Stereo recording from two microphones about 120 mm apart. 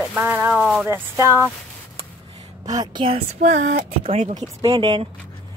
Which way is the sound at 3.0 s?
55° right (ahead or behind).